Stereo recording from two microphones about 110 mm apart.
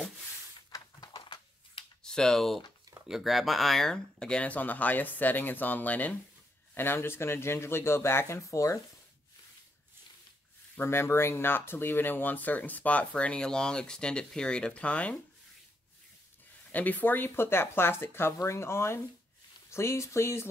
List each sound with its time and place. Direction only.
0.6 s a sound: 35° left (ahead or behind)
2.0 s speech: 5° left (ahead or behind); by 8.7 s 30° left (ahead or behind)
10.8 s speech: 20° left (ahead or behind)
16.7 s speech: 15° left (ahead or behind)